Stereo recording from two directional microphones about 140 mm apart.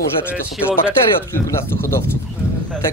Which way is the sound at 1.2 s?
20° left (ahead or behind).